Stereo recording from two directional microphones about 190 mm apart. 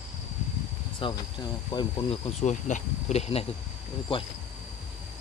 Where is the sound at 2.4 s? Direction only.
40° left (ahead or behind).